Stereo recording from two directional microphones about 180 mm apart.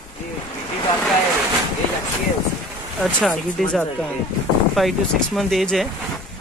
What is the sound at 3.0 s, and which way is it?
Speech, centre (ahead or behind).